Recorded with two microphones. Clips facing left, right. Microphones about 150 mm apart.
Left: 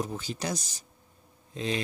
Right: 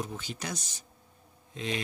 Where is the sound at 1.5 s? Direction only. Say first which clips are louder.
Left 3 dB; 35° left (ahead or behind).